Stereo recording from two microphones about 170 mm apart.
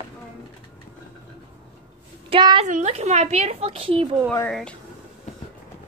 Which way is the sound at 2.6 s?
45° right (ahead or behind).